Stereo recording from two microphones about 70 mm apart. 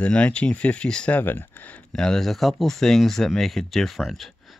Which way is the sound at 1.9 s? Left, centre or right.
Centre.